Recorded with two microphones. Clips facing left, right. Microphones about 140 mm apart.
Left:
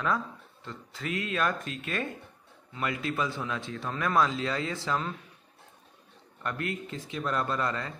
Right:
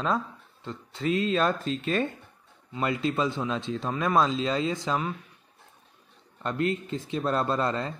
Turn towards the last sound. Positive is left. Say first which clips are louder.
# right 4 dB
turn(degrees=-30)  # may be behind; listen again after turning